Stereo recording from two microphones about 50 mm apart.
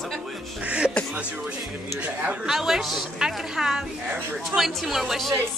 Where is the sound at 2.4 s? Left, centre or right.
Centre.